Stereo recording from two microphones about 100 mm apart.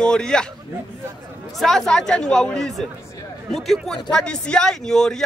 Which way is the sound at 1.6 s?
5° left (ahead or behind).